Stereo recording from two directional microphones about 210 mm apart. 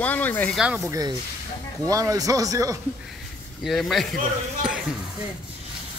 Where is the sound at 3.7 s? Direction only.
Centre (ahead or behind).